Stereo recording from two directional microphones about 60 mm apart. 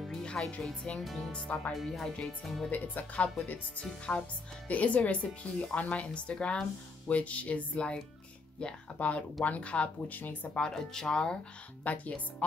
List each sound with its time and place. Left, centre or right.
0.1 s music: centre
0.6 s speech: centre
2.7 s speech: left
10.5 s speech: centre
11.8 s speech: left